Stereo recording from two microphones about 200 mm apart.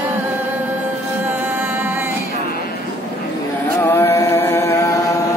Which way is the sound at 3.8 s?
10° left (ahead or behind).